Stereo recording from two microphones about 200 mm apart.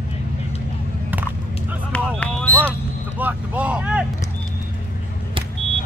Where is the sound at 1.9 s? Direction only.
5° left (ahead or behind).